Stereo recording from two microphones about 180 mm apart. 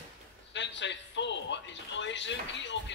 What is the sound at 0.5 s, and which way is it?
Music, 85° left.